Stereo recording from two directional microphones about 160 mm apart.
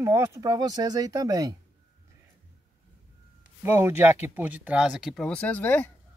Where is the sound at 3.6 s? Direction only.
15° right (ahead or behind); by 5.9 s 10° left (ahead or behind).